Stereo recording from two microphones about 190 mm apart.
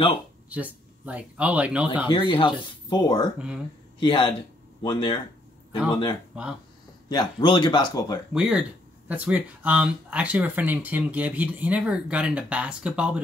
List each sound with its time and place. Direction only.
0.5 s speech: 10° right (ahead or behind)
2.0 s speech: 25° left (ahead or behind)
3.3 s speech: 5° right (ahead or behind)
4.0 s speech: 25° left (ahead or behind)
7.1 s speech: 20° left (ahead or behind)
8.3 s speech: 5° right (ahead or behind)